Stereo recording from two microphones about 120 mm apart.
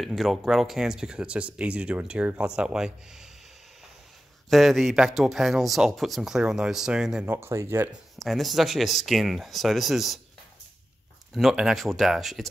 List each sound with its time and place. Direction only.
0.0 s speech: centre (ahead or behind)
4.5 s speech: centre (ahead or behind)
7.2 s speech: 20° right (ahead or behind)
8.2 s speech: centre (ahead or behind)
11.3 s speech: centre (ahead or behind)